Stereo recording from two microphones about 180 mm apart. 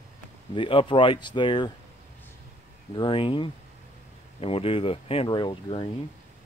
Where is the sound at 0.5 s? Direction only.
30° left (ahead or behind).